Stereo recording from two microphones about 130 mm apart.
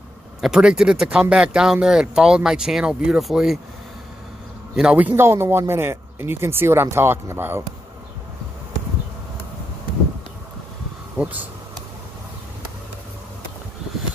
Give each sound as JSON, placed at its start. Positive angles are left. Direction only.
{"t": 0.4, "sound": "speech", "side_deg": -5}
{"t": 4.7, "sound": "a man's voice", "side_deg": -10}